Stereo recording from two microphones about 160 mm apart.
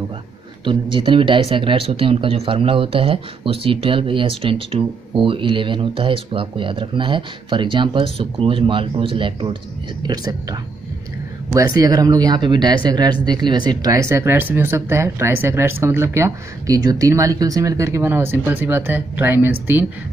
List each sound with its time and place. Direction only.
0.7 s speech: 30° right (ahead or behind); by 19.9 s 10° right (ahead or behind)